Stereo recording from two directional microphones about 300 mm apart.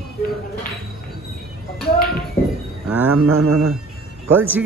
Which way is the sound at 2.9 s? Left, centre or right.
Centre.